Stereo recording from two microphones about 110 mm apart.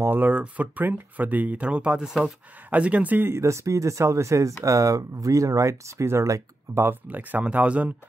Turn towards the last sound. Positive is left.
turn(degrees=-15)  # may be behind; listen again after turning